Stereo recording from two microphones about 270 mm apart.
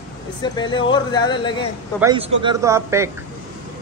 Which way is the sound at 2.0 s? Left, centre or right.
Centre.